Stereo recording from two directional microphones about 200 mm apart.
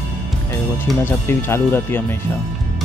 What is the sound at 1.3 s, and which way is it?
Speech, 10° left (ahead or behind).